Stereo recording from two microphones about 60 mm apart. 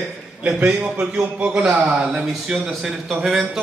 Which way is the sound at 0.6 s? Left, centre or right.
Right.